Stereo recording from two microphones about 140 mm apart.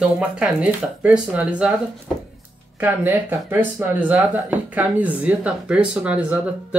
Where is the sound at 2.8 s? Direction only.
15° right (ahead or behind).